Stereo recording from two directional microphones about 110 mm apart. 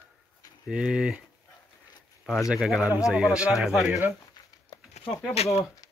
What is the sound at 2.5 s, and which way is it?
Speech, 5° right (ahead or behind).